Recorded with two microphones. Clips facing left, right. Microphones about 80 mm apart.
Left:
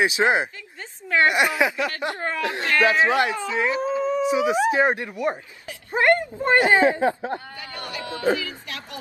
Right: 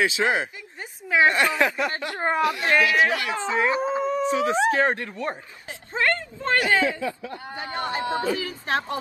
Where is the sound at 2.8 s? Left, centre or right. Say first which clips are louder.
Left 3 dB; left.